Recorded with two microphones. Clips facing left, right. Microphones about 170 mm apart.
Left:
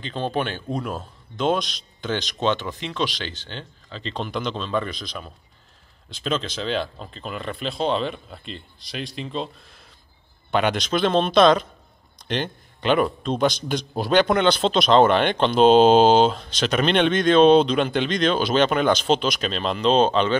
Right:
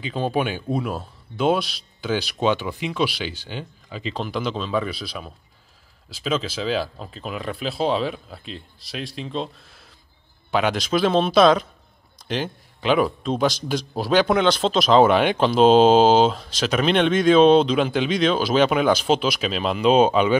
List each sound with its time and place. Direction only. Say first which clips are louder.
0.0 s a man's voice: right 2 dB; 5° right (ahead or behind)